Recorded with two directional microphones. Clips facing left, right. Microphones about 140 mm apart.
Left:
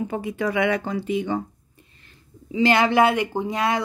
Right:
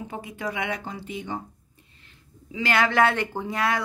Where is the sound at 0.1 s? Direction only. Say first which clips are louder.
Left 7 dB; 70° left (ahead or behind).